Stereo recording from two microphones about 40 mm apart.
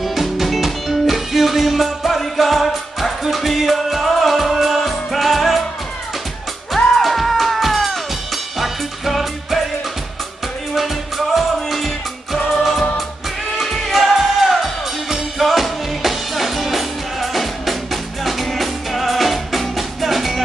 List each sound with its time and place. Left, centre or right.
0.0 s music: centre
6.7 s music: centre
10.7 s music: centre
13.6 s music: centre